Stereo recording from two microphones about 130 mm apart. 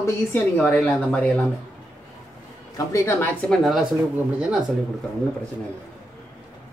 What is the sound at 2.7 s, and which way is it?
Speech, 20° left (ahead or behind).